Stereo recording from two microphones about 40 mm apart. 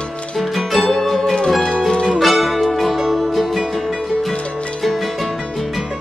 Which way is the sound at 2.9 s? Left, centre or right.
Centre.